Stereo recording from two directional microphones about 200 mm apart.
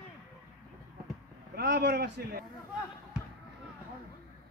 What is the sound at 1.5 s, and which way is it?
Speech, 60° right (ahead or behind).